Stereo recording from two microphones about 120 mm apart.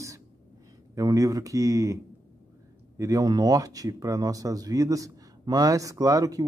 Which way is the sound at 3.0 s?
30° right (ahead or behind).